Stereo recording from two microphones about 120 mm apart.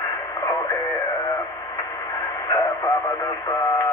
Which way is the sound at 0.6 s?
Centre (ahead or behind).